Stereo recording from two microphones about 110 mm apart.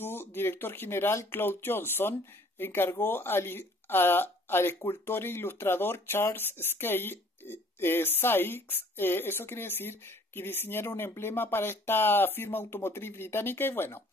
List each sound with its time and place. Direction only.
0.0 s speech: 20° left (ahead or behind)